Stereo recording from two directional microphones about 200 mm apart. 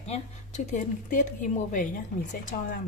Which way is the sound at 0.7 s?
40° left (ahead or behind).